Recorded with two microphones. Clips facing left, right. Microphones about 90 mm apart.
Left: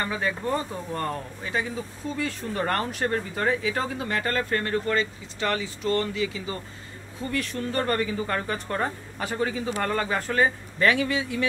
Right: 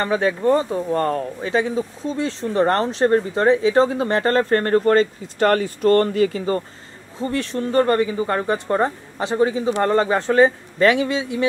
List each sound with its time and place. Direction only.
0.5 s speech: 25° right (ahead or behind)
0.9 s speech: 45° right (ahead or behind)
1.5 s speech: 25° right (ahead or behind); by 6.6 s 50° right (ahead or behind)
7.2 s speech: 25° right (ahead or behind)